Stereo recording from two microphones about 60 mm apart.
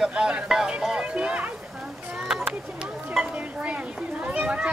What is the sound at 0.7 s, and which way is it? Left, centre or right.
Music, centre.